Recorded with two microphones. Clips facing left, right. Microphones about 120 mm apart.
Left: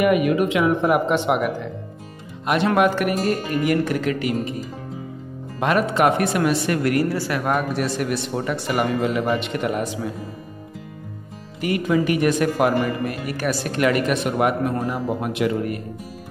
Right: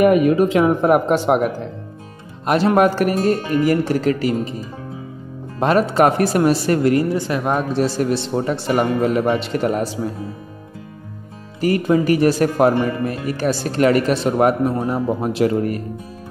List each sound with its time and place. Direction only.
0.0 s a woman's voice: 35° right (ahead or behind)
5.6 s a woman's voice: 35° right (ahead or behind)
11.6 s a woman's voice: 40° right (ahead or behind)